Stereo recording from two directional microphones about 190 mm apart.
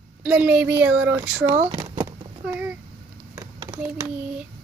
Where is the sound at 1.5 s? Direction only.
30° right (ahead or behind).